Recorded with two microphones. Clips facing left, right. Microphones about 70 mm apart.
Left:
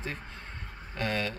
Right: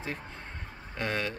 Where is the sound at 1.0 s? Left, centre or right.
Right.